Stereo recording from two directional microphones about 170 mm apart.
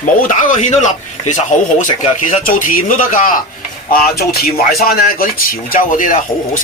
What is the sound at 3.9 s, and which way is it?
A man's voice, 65° left (ahead or behind).